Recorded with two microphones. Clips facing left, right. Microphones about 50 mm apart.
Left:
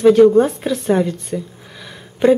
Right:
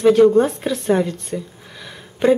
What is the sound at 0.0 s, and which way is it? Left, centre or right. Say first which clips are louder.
Speech: left 2 dB; centre.